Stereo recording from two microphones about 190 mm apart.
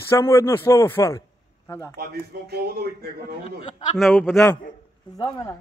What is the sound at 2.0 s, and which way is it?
A man's voice, 55° right (ahead or behind).